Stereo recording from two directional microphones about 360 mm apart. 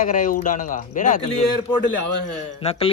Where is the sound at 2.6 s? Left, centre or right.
Centre.